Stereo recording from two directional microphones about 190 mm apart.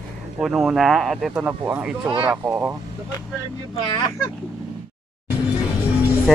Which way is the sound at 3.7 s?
25° left (ahead or behind).